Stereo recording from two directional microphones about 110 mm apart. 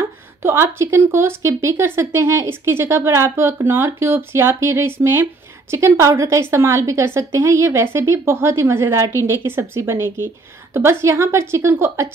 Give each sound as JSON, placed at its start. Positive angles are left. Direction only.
{"t": 0.4, "sound": "speech", "side_deg": -25}